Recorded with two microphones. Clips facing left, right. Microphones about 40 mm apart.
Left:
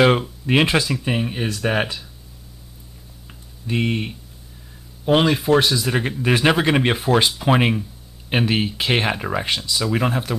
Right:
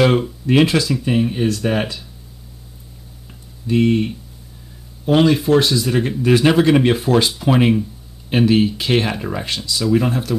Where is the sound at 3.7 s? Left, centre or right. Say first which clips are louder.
Right 7 dB; centre.